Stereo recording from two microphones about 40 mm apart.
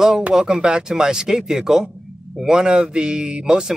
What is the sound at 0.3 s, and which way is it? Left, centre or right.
Speech, centre.